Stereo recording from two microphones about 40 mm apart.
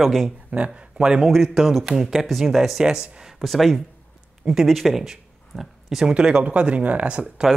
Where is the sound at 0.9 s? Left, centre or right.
Centre.